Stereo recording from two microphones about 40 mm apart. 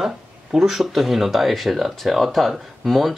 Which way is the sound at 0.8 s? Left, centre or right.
Centre.